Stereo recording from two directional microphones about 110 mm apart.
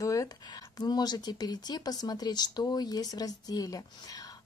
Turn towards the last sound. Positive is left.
turn(degrees=35)  # may be behind; listen again after turning